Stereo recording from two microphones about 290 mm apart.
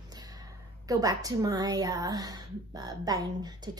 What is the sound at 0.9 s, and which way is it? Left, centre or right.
A woman's voice, centre.